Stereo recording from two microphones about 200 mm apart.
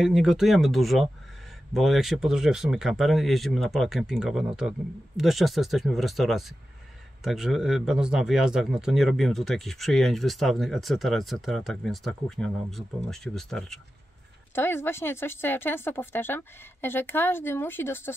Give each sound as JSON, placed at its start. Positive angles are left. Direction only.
{"t": 0.0, "sound": "speech", "side_deg": 0}